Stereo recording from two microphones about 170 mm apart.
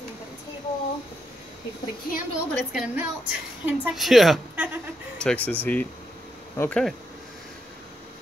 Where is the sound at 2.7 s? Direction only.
5° right (ahead or behind).